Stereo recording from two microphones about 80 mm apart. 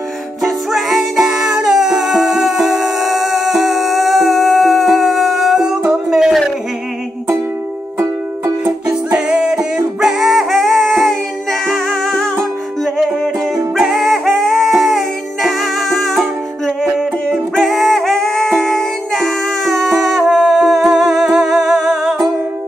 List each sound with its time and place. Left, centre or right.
0.4 s music: centre
8.0 s music: right
8.8 s music: centre